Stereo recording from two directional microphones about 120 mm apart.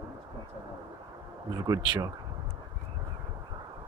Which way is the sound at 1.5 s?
35° right (ahead or behind).